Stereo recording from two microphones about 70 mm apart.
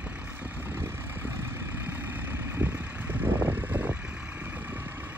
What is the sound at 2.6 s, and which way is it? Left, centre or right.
Vehicle, right.